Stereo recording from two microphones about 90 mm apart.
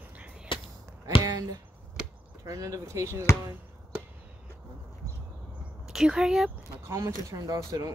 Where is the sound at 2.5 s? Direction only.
40° right (ahead or behind).